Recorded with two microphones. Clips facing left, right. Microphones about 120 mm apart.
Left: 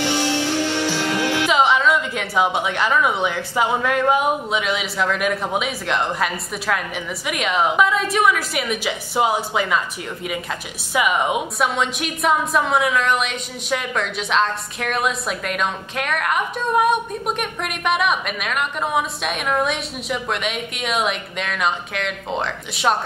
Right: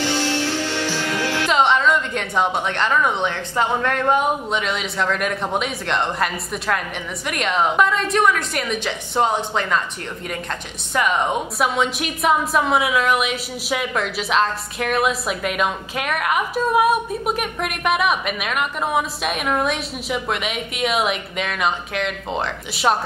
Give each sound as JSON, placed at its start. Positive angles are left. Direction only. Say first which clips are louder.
{"t": 0.0, "sound": "music", "louder": "left 1 dB", "side_deg": 15}
{"t": 1.5, "sound": "a woman's voice", "louder": "right 1 dB", "side_deg": 0}
{"t": 10.9, "sound": "a woman's voice", "louder": "even", "side_deg": 5}